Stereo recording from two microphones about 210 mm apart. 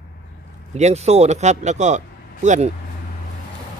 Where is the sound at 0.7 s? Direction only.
30° right (ahead or behind).